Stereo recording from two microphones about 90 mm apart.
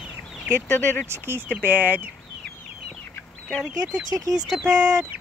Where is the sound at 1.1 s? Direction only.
25° right (ahead or behind).